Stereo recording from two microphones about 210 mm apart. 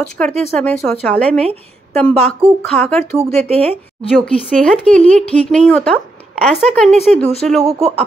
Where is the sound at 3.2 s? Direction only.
30° right (ahead or behind).